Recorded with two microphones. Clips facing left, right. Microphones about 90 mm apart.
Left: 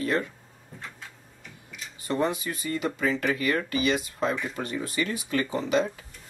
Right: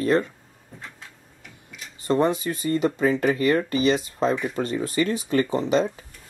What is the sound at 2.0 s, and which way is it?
Speech, 25° right (ahead or behind).